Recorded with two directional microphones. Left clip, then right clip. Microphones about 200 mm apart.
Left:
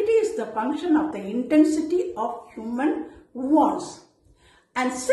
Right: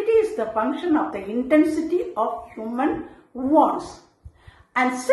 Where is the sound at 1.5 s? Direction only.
45° right (ahead or behind).